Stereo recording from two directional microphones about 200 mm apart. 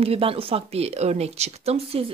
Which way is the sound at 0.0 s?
30° right (ahead or behind).